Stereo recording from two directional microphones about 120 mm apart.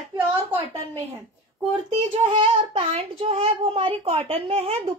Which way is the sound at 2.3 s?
50° right (ahead or behind).